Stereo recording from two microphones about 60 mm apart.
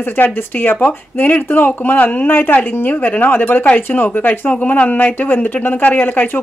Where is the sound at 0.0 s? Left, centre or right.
Left.